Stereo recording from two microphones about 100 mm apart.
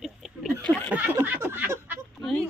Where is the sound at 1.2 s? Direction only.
20° right (ahead or behind).